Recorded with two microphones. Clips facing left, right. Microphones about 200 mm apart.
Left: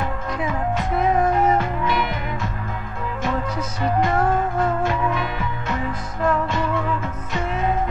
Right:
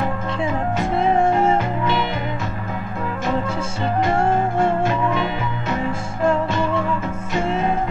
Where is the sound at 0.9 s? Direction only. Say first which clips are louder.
Right 2 dB; 25° right (ahead or behind).